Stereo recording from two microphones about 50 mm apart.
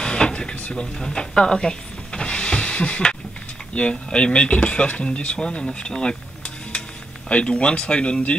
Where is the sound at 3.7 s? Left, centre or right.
Left.